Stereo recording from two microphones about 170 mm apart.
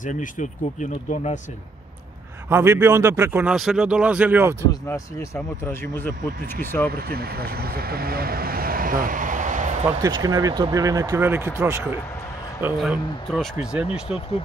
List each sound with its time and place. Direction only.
0.0 s speech: 50° left (ahead or behind)
2.5 s speech: 10° right (ahead or behind)
3.4 s speech: centre (ahead or behind)
4.8 s speech: 15° left (ahead or behind)
6.9 s speech: 65° right (ahead or behind); by 9.8 s 50° right (ahead or behind)
9.8 s speech: 20° right (ahead or behind)
12.7 s speech: centre (ahead or behind)